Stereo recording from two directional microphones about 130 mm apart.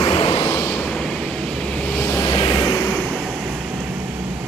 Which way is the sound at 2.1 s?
30° left (ahead or behind).